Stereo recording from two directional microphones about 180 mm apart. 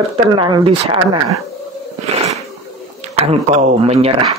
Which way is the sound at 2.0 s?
35° right (ahead or behind).